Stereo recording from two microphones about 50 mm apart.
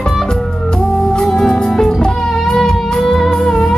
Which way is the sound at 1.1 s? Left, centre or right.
Centre.